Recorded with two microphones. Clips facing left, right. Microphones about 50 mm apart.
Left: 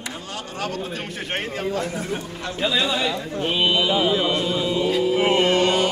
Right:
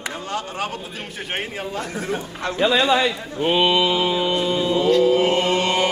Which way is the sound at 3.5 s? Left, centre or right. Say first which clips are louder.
Right 3 dB; right.